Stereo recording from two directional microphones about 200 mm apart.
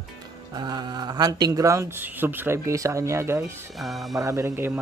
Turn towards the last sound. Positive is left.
turn(degrees=-10)  # may be behind; listen again after turning